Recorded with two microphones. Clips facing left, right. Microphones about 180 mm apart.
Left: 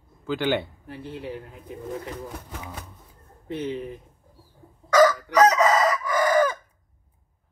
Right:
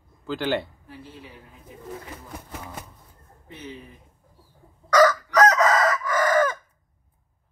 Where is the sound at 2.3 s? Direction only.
Centre (ahead or behind).